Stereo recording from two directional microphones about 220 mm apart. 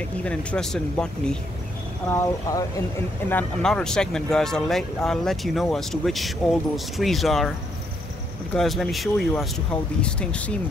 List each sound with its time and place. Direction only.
0.2 s speech: 5° left (ahead or behind)
8.5 s speech: centre (ahead or behind)